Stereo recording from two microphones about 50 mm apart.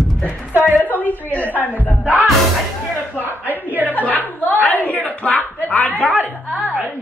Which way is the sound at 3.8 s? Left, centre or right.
Left.